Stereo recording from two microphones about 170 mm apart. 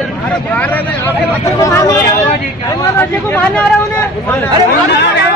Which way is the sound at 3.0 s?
10° left (ahead or behind).